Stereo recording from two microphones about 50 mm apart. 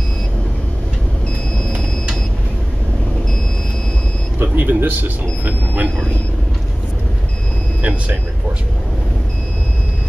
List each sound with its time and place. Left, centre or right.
4.4 s speech: right
7.8 s speech: right